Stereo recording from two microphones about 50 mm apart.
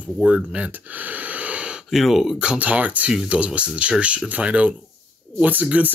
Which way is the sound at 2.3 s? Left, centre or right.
Right.